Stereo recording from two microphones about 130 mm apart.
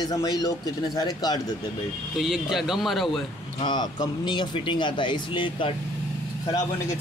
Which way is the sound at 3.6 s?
35° left (ahead or behind).